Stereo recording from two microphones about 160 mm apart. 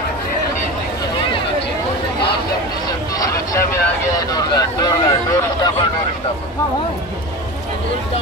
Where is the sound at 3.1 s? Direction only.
20° left (ahead or behind).